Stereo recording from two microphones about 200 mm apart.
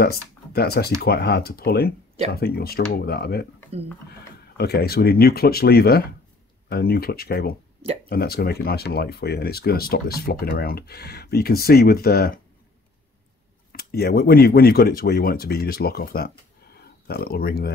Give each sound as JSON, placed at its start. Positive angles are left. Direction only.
{"t": 0.0, "sound": "speech", "side_deg": 50}
{"t": 4.6, "sound": "speech", "side_deg": 55}
{"t": 13.7, "sound": "speech", "side_deg": 50}